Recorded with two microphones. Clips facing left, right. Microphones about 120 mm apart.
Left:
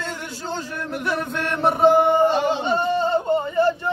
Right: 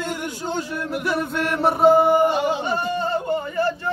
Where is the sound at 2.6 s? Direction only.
25° left (ahead or behind).